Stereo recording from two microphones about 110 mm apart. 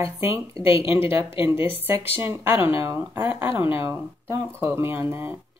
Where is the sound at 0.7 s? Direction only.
55° left (ahead or behind).